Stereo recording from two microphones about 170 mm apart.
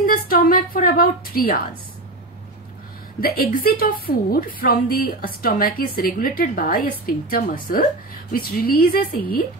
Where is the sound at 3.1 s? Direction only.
60° left (ahead or behind).